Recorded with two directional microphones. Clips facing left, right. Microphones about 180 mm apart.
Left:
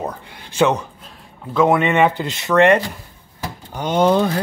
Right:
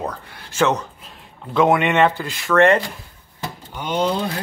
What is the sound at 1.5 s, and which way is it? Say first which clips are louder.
Speech: left 1 dB; centre (ahead or behind).